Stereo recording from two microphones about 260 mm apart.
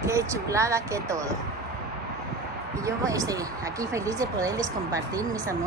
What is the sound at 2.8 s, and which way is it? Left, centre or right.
Speech, centre.